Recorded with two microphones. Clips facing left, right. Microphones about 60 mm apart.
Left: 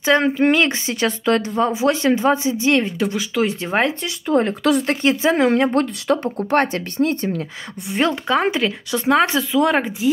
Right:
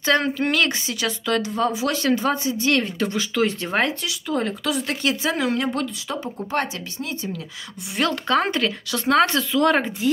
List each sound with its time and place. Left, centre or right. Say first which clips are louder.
0.0 s speech: left 5 dB; centre
3.0 s speech: left 2 dB; centre
4.0 s speech: left 6 dB; left
6.0 s speech: left 9 dB; left
7.9 s speech: left 4 dB; left
8.3 s speech: left 2 dB; centre